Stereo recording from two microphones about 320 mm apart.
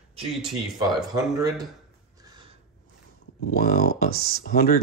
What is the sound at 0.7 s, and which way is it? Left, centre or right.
Speech, centre.